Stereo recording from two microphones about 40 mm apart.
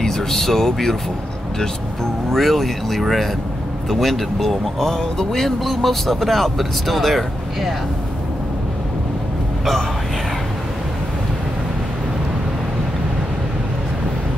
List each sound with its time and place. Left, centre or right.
0.0 s speech: centre
2.3 s speech: centre